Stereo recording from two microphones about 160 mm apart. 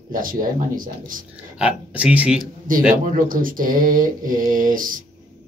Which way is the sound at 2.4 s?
60° right (ahead or behind).